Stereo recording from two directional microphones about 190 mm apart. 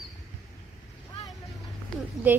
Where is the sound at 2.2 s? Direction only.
10° right (ahead or behind).